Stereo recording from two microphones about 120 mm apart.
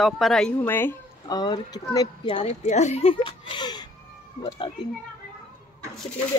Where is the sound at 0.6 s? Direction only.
15° left (ahead or behind).